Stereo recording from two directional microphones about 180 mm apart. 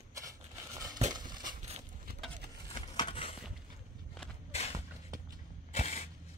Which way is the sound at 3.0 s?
30° left (ahead or behind).